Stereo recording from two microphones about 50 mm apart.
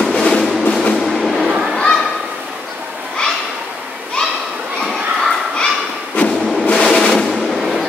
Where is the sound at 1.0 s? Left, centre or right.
Centre.